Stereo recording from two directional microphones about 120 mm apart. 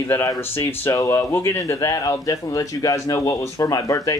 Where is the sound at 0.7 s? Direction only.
20° left (ahead or behind).